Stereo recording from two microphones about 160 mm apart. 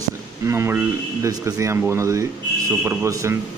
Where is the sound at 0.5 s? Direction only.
15° right (ahead or behind).